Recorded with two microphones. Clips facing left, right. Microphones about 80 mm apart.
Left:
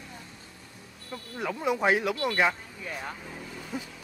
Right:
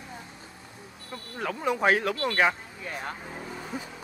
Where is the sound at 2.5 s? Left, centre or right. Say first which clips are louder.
Right 1 dB; centre.